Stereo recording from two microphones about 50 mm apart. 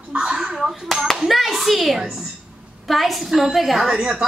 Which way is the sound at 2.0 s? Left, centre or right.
Centre.